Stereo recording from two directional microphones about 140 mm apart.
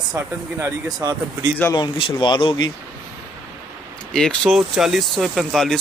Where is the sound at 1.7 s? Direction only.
35° left (ahead or behind).